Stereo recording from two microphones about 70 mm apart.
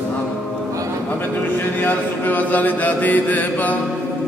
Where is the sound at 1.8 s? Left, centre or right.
Left.